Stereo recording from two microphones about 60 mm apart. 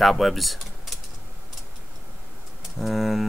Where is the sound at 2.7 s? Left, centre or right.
Centre.